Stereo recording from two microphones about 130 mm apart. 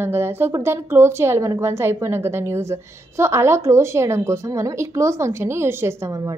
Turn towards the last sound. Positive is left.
turn(degrees=-25)  # may be behind; listen again after turning